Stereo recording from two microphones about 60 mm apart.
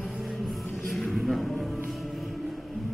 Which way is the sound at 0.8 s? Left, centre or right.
Centre.